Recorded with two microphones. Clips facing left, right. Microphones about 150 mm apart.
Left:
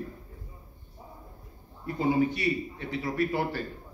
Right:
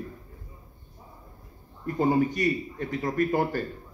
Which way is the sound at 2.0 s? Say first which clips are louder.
Right 2 dB; 45° right (ahead or behind).